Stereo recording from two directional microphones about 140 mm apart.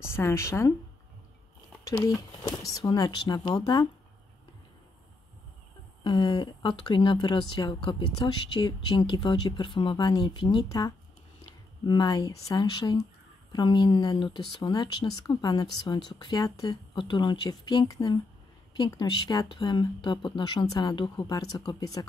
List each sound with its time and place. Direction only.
0.0 s speech: 20° left (ahead or behind)
1.9 s speech: 25° left (ahead or behind)
6.0 s speech: 35° left (ahead or behind)